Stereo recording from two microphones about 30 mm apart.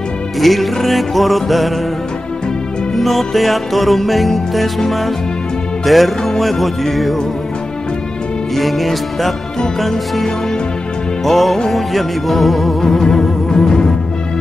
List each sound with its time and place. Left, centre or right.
0.4 s music: centre
3.0 s music: centre
8.5 s music: centre
11.2 s music: centre
12.8 s music: centre